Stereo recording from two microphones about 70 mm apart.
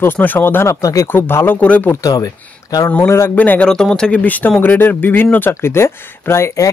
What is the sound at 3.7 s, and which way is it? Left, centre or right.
Speech, centre.